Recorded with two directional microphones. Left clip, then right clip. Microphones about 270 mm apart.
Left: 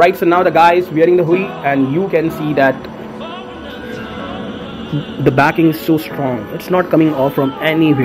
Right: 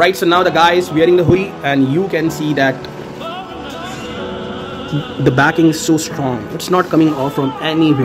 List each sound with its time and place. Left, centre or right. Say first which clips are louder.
0.0 s speech: left 1 dB; centre
5.2 s speech: even; centre